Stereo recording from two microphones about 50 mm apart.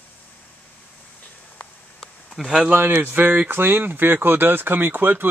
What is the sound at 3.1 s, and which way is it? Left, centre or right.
Speech, right.